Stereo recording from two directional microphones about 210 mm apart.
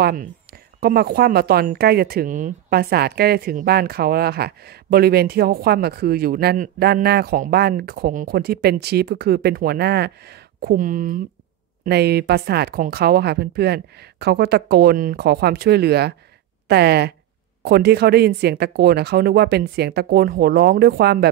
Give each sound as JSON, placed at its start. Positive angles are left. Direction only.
{"t": 0.0, "sound": "speech", "side_deg": -40}